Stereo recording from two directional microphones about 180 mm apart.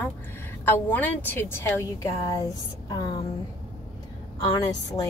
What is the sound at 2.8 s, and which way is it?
Speech, 25° left (ahead or behind).